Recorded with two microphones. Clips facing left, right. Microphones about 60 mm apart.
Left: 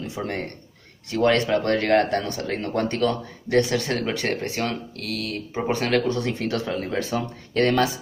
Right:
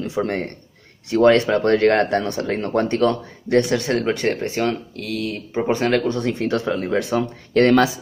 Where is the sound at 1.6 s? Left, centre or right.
Right.